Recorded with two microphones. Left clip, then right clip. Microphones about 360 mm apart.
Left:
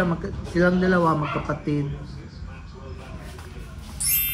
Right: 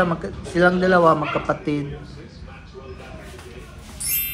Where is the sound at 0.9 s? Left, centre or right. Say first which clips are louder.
Right 6 dB; right.